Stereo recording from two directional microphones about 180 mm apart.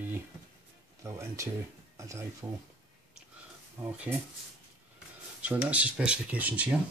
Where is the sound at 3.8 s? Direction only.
5° right (ahead or behind).